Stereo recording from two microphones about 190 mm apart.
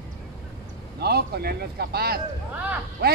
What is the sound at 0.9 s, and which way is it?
A man's voice, 55° right (ahead or behind).